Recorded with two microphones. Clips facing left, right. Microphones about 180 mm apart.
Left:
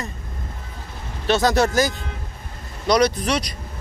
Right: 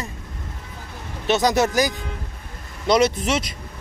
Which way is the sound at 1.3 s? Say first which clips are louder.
Left 1 dB; 20° right (ahead or behind).